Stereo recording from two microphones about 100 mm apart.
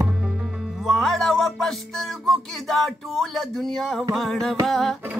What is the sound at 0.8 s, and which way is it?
Music, centre (ahead or behind).